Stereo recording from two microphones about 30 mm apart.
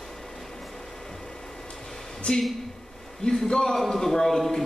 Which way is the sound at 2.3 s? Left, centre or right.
Left.